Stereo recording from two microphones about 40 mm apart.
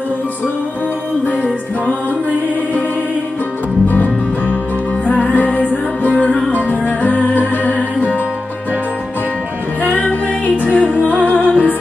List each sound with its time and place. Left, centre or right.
3.9 s music: left
9.8 s music: left